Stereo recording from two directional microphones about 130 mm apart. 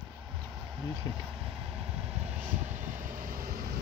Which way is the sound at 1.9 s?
55° right (ahead or behind).